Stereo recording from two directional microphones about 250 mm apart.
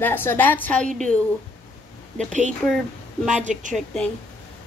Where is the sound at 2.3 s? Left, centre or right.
Right.